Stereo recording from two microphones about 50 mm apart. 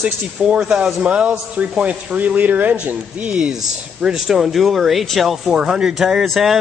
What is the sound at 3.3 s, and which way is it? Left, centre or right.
Speech, centre.